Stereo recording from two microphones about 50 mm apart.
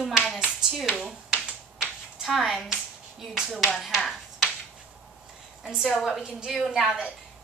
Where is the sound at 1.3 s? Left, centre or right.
Right.